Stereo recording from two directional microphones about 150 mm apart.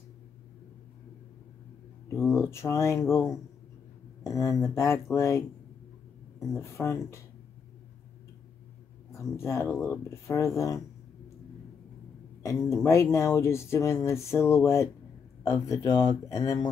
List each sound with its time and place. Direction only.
2.0 s speech: 15° left (ahead or behind)
6.4 s speech: 20° left (ahead or behind)
9.1 s speech: 20° left (ahead or behind)
12.4 s speech: 20° left (ahead or behind)